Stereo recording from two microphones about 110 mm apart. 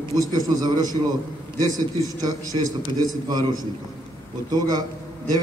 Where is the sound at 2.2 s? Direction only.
35° right (ahead or behind).